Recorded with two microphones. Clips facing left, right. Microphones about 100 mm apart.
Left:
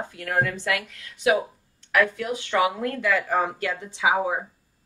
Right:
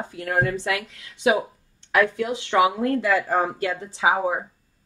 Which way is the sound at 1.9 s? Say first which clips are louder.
Right 2 dB; 25° right (ahead or behind).